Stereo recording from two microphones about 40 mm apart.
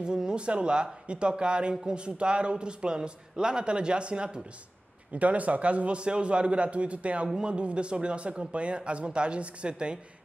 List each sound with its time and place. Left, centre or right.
0.0 s speech: centre
5.1 s a man's voice: right